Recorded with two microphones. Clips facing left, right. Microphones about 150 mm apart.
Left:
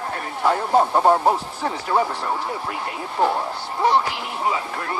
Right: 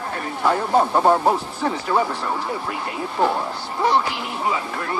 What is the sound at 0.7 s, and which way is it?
Speech, 10° left (ahead or behind).